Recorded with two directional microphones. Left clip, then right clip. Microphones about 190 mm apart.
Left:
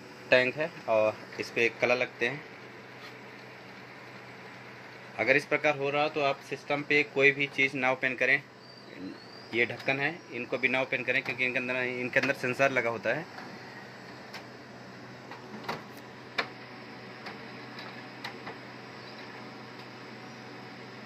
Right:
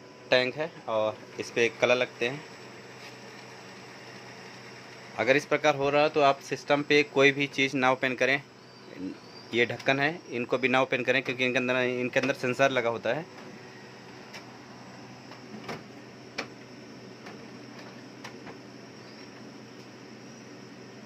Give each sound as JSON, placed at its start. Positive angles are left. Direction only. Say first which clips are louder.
{"t": 0.3, "sound": "speech", "louder": "left 1 dB", "side_deg": -5}
{"t": 1.4, "sound": "speech", "louder": "right 2 dB", "side_deg": -25}
{"t": 5.1, "sound": "speech", "louder": "right 1 dB", "side_deg": -25}
{"t": 5.8, "sound": "speech", "louder": "right 5 dB", "side_deg": -45}
{"t": 9.5, "sound": "speech", "louder": "right 3 dB", "side_deg": -35}
{"t": 12.1, "sound": "speech", "louder": "even", "side_deg": -20}